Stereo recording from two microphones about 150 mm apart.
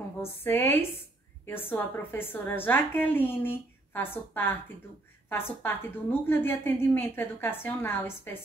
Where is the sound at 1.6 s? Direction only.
15° left (ahead or behind).